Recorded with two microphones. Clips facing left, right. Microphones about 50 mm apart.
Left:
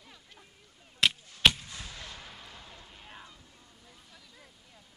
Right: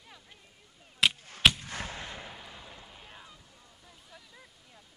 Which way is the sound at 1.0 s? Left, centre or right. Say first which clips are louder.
Even; centre.